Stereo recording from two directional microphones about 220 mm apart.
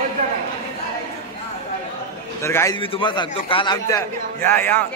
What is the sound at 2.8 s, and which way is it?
A man's voice, 25° left (ahead or behind).